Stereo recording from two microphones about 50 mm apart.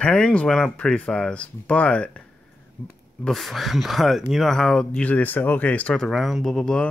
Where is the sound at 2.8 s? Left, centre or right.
Left.